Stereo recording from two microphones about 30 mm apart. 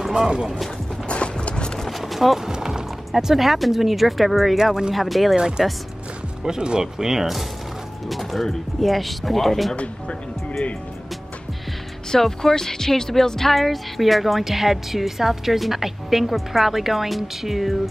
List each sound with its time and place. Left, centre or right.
0.1 s speech: right
1.0 s clip-clop: left
1.9 s a sound: centre
2.5 s music: right
3.3 s speech: centre
5.6 s a woman's voice: centre
12.1 s a woman's voice: centre